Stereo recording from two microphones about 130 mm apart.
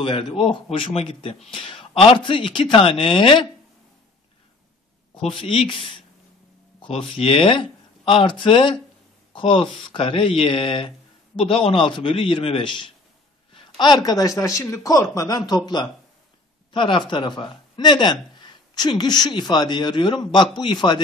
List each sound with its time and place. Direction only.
0.0 s speech: 40° left (ahead or behind)
5.2 s a man's voice: 45° left (ahead or behind)